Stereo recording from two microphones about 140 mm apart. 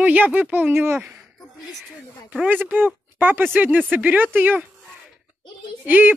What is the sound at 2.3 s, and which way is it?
Speech, 10° right (ahead or behind).